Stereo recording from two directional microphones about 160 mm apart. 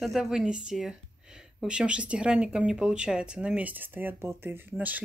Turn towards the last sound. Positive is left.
turn(degrees=-10)  # may be behind; listen again after turning